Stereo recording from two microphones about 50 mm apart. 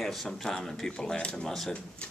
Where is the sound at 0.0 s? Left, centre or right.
Centre.